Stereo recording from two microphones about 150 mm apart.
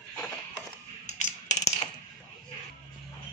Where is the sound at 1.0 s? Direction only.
50° left (ahead or behind).